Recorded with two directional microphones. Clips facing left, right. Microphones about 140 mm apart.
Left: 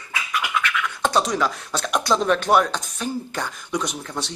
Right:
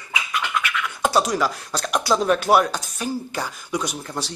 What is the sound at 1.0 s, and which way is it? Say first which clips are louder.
Speech: right 1 dB; 5° right (ahead or behind).